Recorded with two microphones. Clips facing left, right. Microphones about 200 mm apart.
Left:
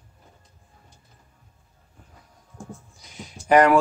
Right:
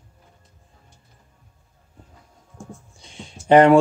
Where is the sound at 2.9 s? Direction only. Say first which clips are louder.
Right 1 dB; 30° right (ahead or behind).